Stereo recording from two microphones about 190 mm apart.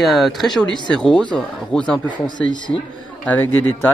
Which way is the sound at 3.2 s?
10° left (ahead or behind).